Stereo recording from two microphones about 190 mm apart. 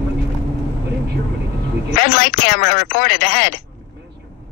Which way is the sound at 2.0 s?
45° left (ahead or behind).